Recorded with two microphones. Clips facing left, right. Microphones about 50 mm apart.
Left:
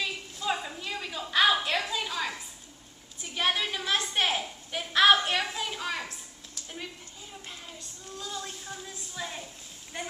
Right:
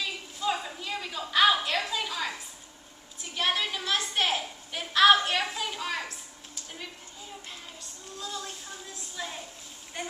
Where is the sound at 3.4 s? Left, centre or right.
Centre.